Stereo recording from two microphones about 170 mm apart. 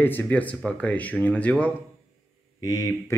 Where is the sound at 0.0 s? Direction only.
10° left (ahead or behind).